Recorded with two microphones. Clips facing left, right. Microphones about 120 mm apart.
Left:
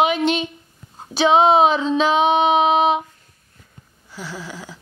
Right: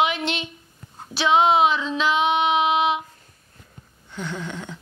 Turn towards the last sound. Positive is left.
turn(degrees=5)  # may be behind; listen again after turning